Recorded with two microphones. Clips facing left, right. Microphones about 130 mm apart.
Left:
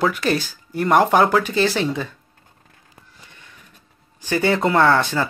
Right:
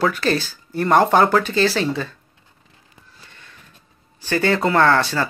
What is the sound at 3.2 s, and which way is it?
Sniff, 15° left (ahead or behind).